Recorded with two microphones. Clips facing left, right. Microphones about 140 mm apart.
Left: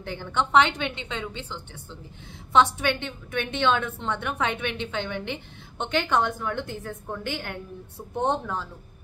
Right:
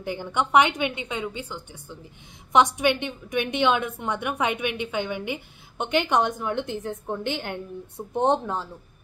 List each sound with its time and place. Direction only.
0.0 s a woman's voice: 10° right (ahead or behind)